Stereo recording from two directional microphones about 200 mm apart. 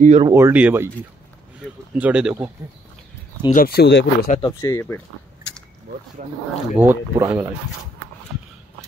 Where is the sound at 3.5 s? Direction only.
50° left (ahead or behind).